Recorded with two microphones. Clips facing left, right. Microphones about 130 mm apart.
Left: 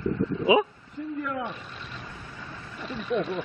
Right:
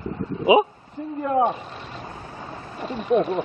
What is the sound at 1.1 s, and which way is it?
Vehicle, 30° right (ahead or behind).